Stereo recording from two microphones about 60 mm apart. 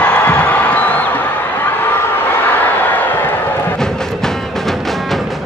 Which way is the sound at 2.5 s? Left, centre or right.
Left.